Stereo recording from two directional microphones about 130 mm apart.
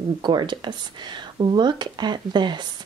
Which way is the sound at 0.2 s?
35° right (ahead or behind).